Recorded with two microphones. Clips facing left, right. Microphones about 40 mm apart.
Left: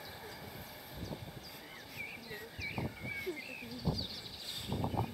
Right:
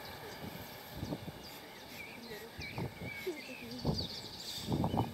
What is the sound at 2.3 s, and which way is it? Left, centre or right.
Bird, centre.